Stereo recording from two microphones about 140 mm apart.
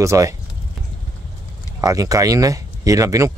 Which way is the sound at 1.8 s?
25° right (ahead or behind).